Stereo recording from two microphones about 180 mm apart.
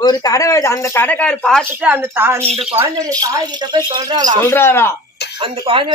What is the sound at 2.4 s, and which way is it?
Speech, 35° right (ahead or behind).